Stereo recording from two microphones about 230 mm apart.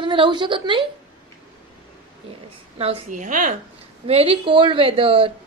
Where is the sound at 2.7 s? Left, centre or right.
Right.